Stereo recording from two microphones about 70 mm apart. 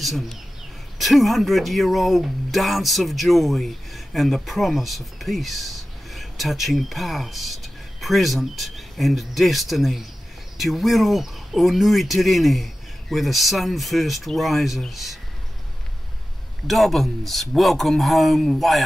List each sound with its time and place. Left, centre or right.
0.0 s speech: centre
16.6 s speech: centre